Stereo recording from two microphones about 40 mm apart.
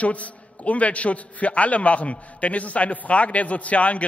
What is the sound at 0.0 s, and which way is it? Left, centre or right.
A man's voice, left.